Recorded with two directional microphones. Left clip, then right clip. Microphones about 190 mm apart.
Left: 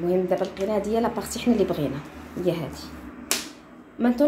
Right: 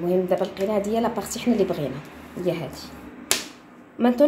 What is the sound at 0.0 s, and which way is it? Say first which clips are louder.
A woman's voice: right 1 dB; 5° right (ahead or behind).